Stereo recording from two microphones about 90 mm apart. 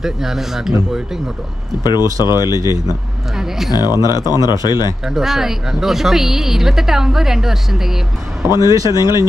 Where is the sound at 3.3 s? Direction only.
5° right (ahead or behind).